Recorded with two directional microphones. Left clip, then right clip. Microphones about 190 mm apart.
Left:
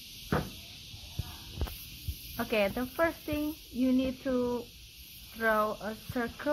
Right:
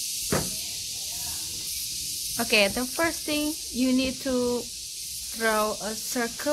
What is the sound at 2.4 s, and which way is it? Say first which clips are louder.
Speech: right 7 dB; 20° right (ahead or behind).